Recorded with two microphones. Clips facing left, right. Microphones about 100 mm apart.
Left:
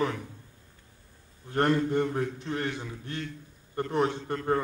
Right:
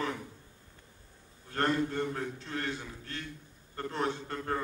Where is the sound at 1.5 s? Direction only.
15° left (ahead or behind).